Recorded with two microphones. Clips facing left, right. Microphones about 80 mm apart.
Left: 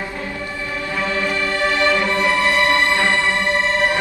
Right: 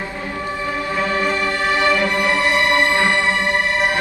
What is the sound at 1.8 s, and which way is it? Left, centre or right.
Music, centre.